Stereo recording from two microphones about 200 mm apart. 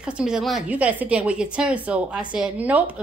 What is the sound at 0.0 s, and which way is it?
A woman's voice, 5° right (ahead or behind).